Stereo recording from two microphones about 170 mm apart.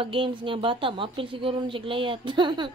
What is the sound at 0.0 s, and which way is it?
A woman's voice, 30° right (ahead or behind).